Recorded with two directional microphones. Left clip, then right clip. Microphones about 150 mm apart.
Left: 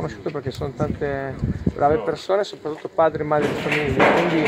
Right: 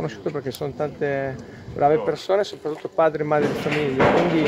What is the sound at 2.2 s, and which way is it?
Speech, 10° right (ahead or behind).